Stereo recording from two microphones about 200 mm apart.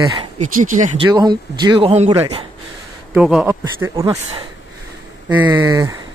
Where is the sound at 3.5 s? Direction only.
15° right (ahead or behind).